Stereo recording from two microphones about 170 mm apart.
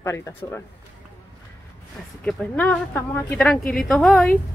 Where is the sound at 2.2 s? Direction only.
5° left (ahead or behind).